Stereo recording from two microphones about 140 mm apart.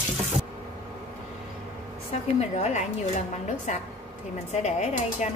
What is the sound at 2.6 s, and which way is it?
A woman's voice, 55° left (ahead or behind).